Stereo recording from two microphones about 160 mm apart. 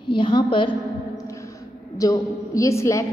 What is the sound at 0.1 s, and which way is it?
Speech, 30° left (ahead or behind).